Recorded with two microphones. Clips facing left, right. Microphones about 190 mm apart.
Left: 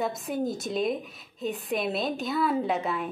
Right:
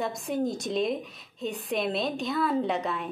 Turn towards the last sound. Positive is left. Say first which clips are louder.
# left 1 dB
turn(degrees=0)  # may be behind; listen again after turning